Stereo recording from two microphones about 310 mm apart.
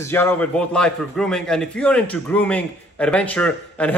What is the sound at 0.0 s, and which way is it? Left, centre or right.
A man's voice, centre.